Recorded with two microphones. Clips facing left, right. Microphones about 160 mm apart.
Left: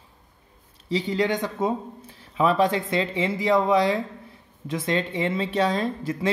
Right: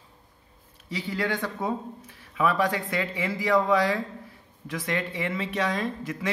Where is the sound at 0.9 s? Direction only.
25° left (ahead or behind).